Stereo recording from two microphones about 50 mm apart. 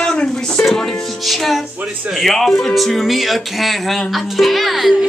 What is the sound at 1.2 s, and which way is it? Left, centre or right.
Music, centre.